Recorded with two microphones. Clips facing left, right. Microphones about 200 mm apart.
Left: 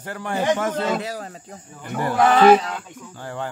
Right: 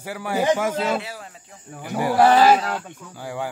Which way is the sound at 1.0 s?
40° left (ahead or behind).